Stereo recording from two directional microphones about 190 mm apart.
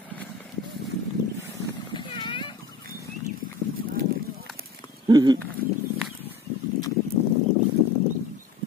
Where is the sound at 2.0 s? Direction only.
25° left (ahead or behind).